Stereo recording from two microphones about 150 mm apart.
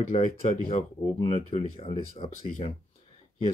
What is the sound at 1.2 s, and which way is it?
Speech, 40° left (ahead or behind).